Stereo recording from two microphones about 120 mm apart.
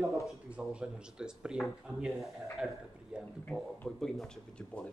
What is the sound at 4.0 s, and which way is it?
Speech, 5° left (ahead or behind).